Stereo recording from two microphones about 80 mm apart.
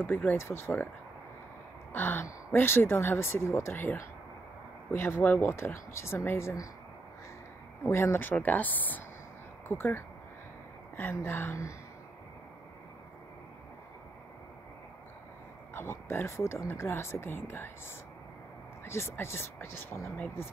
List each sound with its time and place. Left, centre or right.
0.0 s speech: left
1.9 s a sound: left
2.5 s speech: left
5.6 s speech: left
7.8 s speech: left
15.7 s speech: left
18.9 s speech: left